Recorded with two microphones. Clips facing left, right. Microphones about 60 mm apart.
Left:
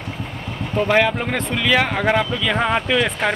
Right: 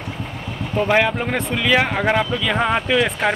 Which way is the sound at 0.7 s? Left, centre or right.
Centre.